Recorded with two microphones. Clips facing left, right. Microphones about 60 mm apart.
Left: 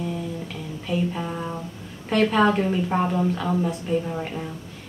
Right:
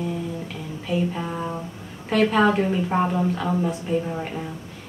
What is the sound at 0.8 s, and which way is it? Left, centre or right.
Music, centre.